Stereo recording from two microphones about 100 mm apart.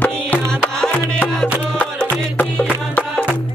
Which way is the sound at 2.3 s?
15° left (ahead or behind).